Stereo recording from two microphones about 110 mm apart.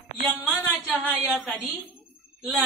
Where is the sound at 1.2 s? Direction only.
Centre (ahead or behind).